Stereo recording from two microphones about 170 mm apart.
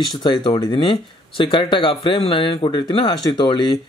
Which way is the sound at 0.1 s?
25° left (ahead or behind).